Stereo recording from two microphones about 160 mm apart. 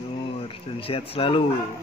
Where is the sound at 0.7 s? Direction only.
35° left (ahead or behind).